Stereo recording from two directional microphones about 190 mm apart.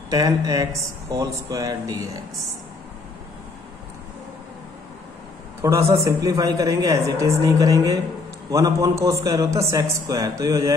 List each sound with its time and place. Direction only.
0.1 s a man's voice: 20° right (ahead or behind)
5.6 s a man's voice: 15° right (ahead or behind)